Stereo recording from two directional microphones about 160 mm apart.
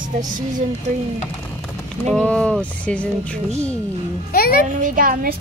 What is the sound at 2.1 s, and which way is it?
Speech, 5° left (ahead or behind).